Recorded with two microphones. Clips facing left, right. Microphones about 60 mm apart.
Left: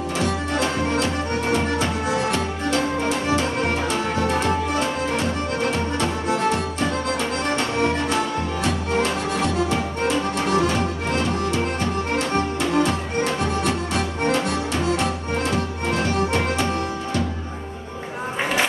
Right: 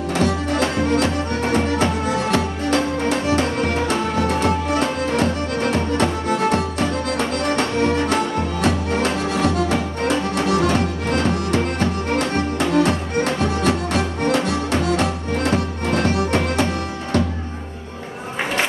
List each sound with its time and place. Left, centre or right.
0.2 s music: right